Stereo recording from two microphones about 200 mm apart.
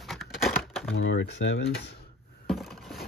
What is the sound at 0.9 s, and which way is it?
Speech, 60° left (ahead or behind).